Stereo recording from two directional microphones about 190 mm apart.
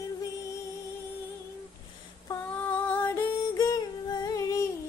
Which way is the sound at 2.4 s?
10° left (ahead or behind).